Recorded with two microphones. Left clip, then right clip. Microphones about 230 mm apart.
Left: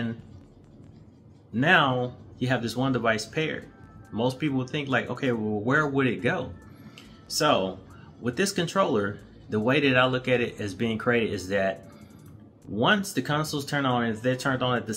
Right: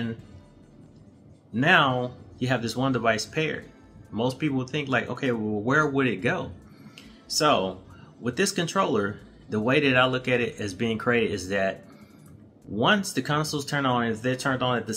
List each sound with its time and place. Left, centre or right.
1.5 s speech: centre
7.0 s a sound: centre
8.2 s speech: centre